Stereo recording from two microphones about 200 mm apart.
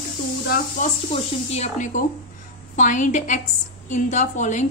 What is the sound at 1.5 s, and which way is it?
A woman's voice, 35° left (ahead or behind).